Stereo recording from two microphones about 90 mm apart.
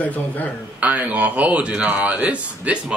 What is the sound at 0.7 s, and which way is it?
Speech, 15° right (ahead or behind).